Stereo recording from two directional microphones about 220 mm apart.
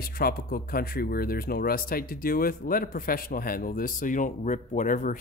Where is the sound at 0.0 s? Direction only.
40° left (ahead or behind).